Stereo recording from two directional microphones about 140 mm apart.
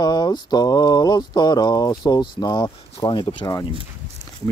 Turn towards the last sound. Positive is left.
turn(degrees=30)  # may be behind; listen again after turning